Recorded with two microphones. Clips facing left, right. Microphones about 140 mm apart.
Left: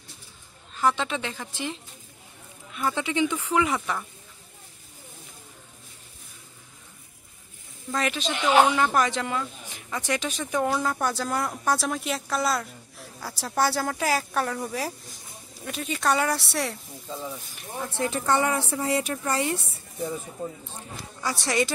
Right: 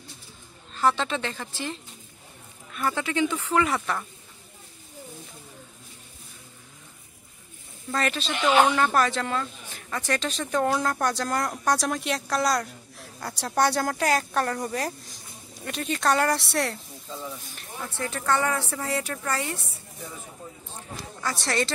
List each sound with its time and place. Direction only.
0.7 s speech: 10° left (ahead or behind)
7.9 s speech: 15° left (ahead or behind)
21.2 s speech: 10° left (ahead or behind)